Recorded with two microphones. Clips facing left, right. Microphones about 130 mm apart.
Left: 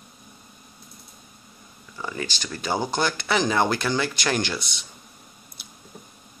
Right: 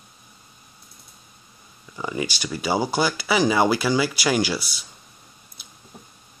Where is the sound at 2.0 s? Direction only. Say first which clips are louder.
Right 4 dB; 15° right (ahead or behind).